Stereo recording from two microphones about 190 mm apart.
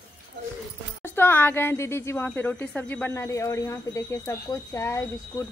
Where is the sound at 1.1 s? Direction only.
10° left (ahead or behind).